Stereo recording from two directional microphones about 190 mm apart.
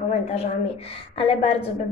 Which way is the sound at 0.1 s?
35° left (ahead or behind).